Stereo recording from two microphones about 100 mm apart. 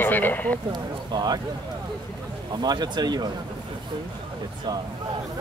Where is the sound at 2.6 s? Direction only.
45° right (ahead or behind).